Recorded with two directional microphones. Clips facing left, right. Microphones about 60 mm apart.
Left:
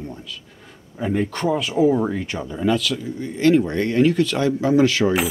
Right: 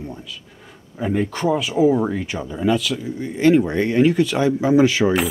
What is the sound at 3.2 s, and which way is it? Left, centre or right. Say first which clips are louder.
Speech: right 1 dB; centre.